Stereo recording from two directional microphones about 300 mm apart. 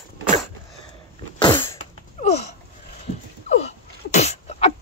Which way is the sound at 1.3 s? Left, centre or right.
Centre.